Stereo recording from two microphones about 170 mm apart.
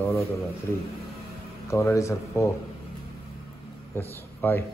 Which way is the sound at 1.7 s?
15° left (ahead or behind).